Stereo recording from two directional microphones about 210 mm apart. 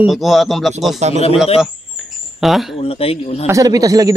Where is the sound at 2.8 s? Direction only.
25° left (ahead or behind).